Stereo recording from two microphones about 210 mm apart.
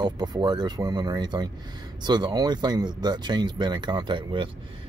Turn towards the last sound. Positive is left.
turn(degrees=-20)  # may be behind; listen again after turning